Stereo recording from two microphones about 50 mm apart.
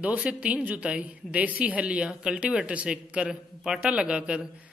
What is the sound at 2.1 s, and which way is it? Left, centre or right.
A man's voice, centre.